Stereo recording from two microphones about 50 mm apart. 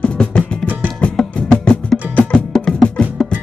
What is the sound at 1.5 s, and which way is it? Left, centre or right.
Music, left.